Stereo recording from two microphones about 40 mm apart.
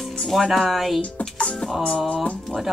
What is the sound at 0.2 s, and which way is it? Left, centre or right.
Speech, centre.